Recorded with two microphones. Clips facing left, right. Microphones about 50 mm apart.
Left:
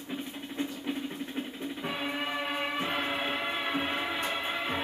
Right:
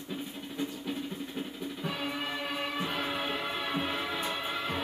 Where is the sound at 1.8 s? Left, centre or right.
Left.